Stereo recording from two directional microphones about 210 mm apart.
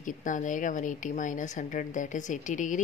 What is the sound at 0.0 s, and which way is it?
A woman's voice, 40° left (ahead or behind).